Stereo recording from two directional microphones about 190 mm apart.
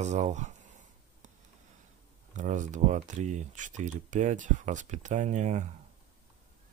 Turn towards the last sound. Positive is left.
turn(degrees=-40)  # may be behind; listen again after turning